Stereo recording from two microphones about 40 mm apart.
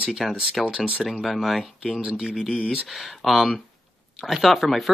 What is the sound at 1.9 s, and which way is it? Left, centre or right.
Speech, right.